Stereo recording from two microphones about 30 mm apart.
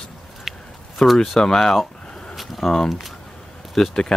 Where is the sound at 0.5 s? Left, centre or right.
Centre.